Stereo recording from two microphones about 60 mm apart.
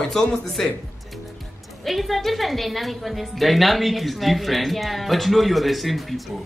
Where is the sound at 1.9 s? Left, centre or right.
Centre.